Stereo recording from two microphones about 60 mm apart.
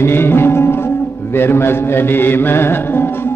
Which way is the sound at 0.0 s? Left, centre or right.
Left.